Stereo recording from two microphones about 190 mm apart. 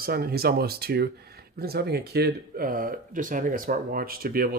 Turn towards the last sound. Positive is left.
turn(degrees=-50)  # may be behind; listen again after turning